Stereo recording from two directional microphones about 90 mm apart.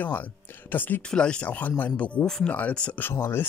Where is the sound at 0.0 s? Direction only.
20° left (ahead or behind).